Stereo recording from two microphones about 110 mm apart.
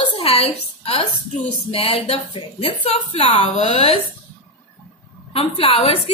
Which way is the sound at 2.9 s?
70° left (ahead or behind).